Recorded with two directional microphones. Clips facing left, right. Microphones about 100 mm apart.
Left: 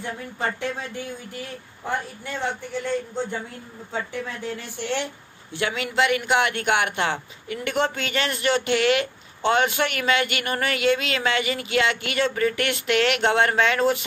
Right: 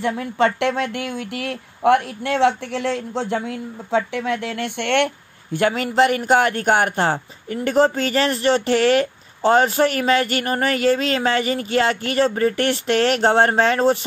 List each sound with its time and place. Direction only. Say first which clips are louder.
0.0 s speech: right 10 dB; 90° right; by 5.6 s 65° right (ahead or behind)
5.6 s a woman's voice: right 6 dB; 40° right (ahead or behind)